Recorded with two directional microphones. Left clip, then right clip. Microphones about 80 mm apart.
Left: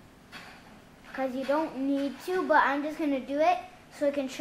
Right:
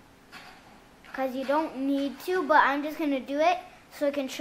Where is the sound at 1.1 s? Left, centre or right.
Right.